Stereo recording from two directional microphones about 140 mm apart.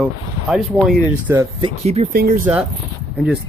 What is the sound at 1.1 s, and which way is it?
Speech, 15° right (ahead or behind).